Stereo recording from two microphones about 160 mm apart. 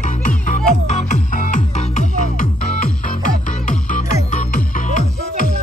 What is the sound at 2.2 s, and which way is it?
Music, 60° left (ahead or behind).